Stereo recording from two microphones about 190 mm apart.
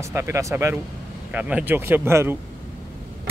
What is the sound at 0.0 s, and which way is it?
Speech, 15° right (ahead or behind).